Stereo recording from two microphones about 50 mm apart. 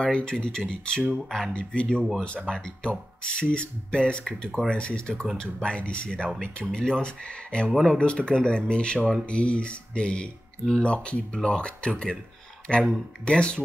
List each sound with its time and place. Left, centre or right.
0.0 s speech: centre
1.5 s speech: left
7.7 s speech: centre
8.0 s speech: left